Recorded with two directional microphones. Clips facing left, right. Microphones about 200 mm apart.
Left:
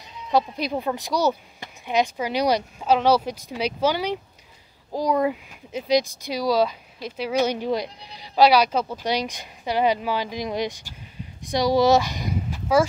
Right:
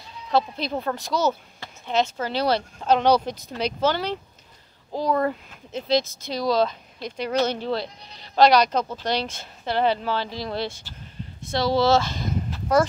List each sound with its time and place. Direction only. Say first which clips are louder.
0.3 s speech: left 1 dB; 15° left (ahead or behind)